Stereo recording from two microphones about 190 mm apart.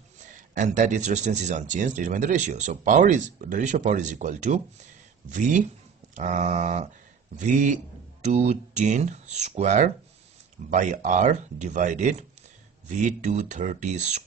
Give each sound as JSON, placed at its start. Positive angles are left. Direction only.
{"t": 0.2, "sound": "speech", "side_deg": -40}
{"t": 6.1, "sound": "speech", "side_deg": -40}